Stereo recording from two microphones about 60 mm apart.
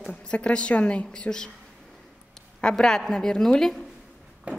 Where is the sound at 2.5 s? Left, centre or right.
Centre.